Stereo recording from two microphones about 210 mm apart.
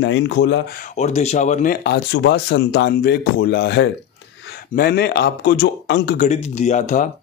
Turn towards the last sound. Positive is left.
turn(degrees=35)  # may be behind; listen again after turning